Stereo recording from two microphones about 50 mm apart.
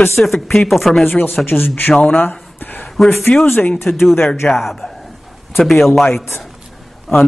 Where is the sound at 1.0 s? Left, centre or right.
Left.